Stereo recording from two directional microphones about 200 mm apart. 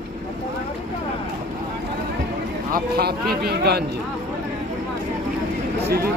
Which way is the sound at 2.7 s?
50° right (ahead or behind).